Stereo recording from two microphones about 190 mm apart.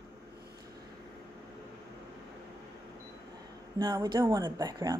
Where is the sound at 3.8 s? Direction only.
20° right (ahead or behind).